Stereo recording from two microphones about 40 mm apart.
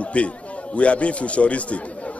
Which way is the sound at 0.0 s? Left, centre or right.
Left.